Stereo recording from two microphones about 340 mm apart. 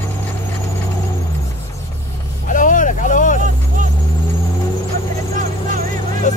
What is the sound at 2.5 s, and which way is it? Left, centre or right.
Vehicle, left.